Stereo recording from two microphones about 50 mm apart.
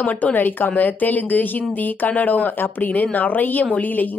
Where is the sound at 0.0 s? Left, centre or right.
Left.